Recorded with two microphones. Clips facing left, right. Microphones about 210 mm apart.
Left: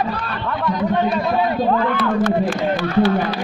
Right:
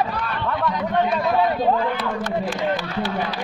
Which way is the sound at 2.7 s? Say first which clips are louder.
Left 8 dB; 60° left (ahead or behind).